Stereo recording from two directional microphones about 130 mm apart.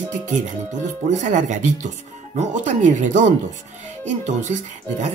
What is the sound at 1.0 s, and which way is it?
Speech, 65° right (ahead or behind).